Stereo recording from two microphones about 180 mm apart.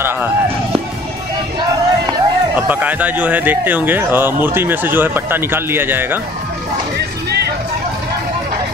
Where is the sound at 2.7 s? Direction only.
10° right (ahead or behind).